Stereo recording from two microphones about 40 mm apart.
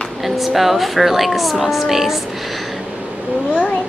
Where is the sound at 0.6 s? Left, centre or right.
Centre.